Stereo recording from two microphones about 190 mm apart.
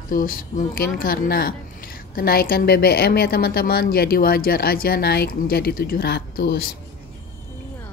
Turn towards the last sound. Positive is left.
turn(degrees=60)  # may be behind; listen again after turning